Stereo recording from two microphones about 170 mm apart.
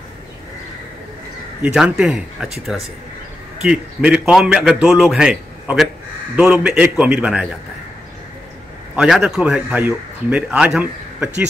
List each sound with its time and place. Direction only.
1.6 s a man's voice: 5° right (ahead or behind)
8.9 s speech: 5° right (ahead or behind)